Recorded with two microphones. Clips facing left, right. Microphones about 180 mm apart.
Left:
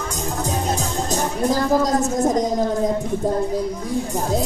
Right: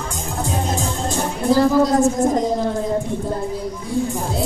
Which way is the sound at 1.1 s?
40° left (ahead or behind).